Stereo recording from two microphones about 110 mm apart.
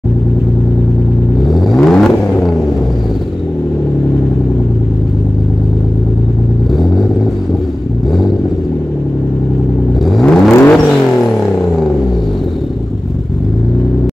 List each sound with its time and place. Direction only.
1.5 s vehicle: centre (ahead or behind)
10.0 s vehicle: centre (ahead or behind)